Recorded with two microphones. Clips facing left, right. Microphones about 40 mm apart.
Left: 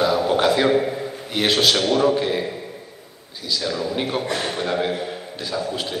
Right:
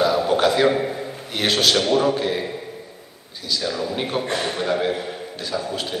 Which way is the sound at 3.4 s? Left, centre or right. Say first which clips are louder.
Even; centre.